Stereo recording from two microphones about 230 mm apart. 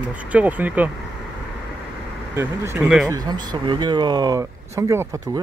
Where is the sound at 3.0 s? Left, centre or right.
Centre.